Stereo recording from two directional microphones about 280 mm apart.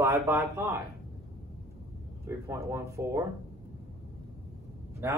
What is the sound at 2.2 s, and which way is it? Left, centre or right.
Speech, centre.